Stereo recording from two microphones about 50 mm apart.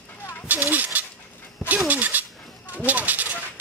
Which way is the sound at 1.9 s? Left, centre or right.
Right.